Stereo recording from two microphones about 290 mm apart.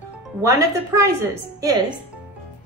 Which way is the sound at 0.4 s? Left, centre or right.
Centre.